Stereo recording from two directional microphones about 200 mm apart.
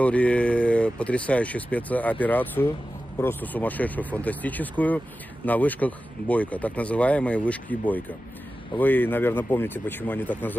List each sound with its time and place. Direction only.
0.0 s speech: 5° left (ahead or behind)